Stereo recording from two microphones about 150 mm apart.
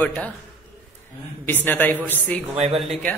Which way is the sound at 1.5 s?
10° left (ahead or behind).